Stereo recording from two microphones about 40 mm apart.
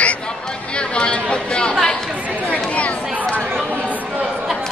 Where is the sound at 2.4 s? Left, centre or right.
Left.